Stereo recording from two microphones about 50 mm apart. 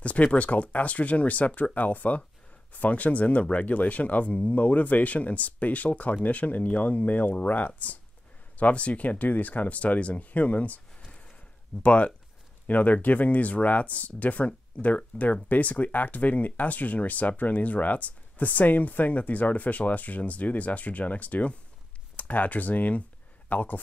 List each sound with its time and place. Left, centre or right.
0.0 s speech: left